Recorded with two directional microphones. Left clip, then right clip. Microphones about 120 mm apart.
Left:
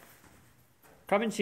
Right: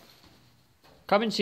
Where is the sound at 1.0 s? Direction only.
35° right (ahead or behind).